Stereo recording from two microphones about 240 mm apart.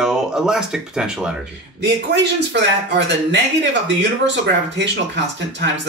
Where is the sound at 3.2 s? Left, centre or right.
Right.